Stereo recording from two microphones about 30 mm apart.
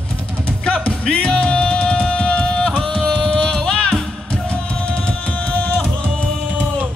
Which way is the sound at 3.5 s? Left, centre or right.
Left.